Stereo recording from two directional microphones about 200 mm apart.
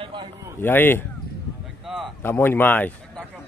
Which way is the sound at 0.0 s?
25° right (ahead or behind).